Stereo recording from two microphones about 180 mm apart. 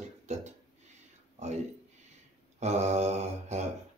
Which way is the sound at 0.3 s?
40° right (ahead or behind).